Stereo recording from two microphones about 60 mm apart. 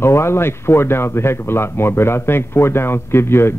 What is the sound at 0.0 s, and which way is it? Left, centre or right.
Speech, left.